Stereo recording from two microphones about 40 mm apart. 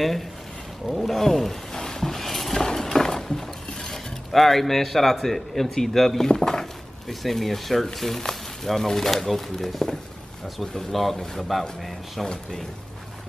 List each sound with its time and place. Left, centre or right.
0.8 s speech: centre
12.3 s speech: centre